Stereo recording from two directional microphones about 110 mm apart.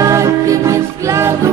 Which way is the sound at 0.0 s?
30° right (ahead or behind).